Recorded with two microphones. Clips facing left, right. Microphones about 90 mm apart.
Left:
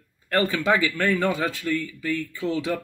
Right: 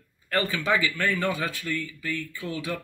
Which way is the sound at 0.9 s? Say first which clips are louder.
Left 4 dB; 20° left (ahead or behind).